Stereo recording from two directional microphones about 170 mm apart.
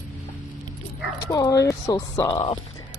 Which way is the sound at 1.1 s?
20° left (ahead or behind).